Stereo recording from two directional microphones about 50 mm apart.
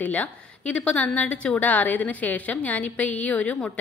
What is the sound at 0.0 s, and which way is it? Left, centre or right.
A woman's voice, left.